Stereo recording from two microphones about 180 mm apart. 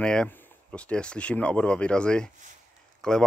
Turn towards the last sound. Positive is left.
turn(degrees=5)  # may be behind; listen again after turning